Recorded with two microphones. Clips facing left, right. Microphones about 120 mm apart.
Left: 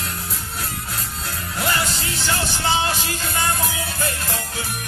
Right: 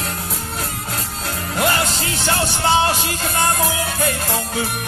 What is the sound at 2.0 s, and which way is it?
Music, 50° right (ahead or behind).